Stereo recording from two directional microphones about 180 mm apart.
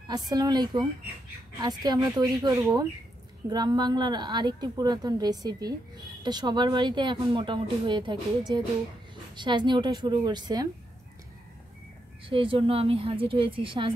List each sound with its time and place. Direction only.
0.3 s a woman's voice: 20° right (ahead or behind)
12.3 s a woman's voice: 30° right (ahead or behind)